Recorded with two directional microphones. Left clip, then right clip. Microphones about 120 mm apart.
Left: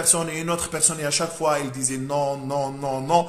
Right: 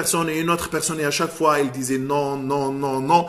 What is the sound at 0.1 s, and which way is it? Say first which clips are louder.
A man's voice: right 6 dB; 25° left (ahead or behind).